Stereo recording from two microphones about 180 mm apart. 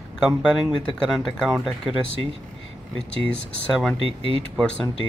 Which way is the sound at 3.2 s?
5° left (ahead or behind).